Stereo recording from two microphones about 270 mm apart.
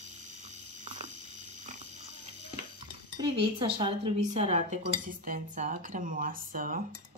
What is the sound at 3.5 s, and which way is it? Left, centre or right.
Speech, centre.